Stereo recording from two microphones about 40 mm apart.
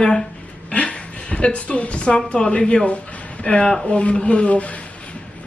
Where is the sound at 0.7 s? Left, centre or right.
Left.